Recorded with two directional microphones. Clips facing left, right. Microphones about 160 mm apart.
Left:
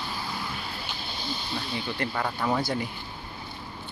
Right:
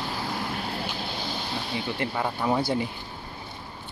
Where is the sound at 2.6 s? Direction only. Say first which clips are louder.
Right 3 dB; 25° right (ahead or behind).